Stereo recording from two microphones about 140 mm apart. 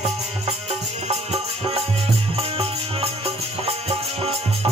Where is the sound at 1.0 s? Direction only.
50° right (ahead or behind).